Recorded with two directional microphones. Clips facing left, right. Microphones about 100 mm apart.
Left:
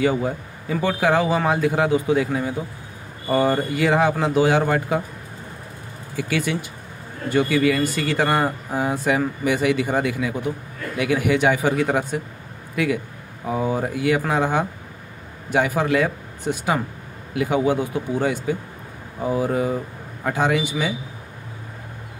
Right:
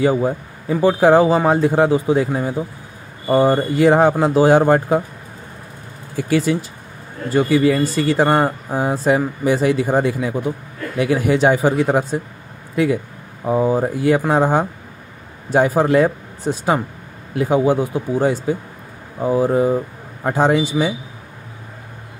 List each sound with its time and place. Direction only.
0.0 s a man's voice: 35° right (ahead or behind)
6.1 s speech: 35° right (ahead or behind)